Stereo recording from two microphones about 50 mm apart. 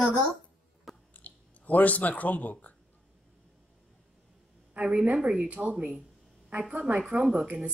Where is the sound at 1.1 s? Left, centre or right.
Left.